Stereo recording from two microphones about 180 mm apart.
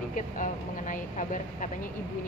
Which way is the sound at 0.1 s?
45° left (ahead or behind).